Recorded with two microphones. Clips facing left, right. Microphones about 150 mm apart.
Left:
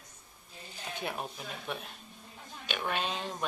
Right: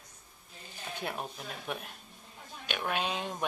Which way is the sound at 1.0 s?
Centre (ahead or behind).